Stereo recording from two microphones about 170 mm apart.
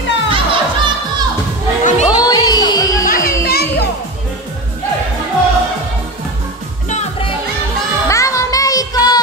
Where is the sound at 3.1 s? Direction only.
55° left (ahead or behind).